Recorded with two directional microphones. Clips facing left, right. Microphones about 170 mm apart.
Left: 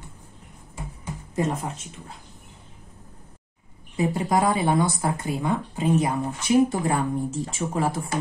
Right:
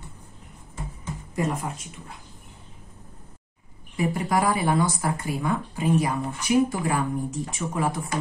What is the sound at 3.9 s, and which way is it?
Speech, 25° left (ahead or behind).